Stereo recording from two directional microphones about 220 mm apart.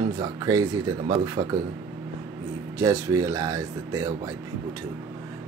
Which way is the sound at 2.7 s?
15° right (ahead or behind).